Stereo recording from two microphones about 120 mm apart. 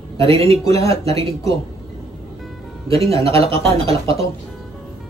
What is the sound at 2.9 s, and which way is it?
A man's voice, 55° right (ahead or behind).